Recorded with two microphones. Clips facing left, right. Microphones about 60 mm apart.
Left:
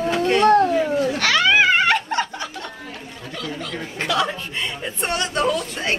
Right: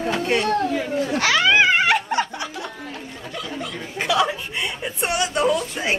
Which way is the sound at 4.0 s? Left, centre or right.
Centre.